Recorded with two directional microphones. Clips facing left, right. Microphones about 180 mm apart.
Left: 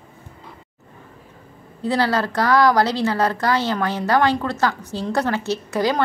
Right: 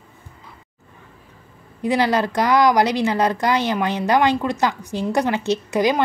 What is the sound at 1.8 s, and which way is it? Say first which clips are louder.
A woman's voice: right 1 dB; 15° right (ahead or behind).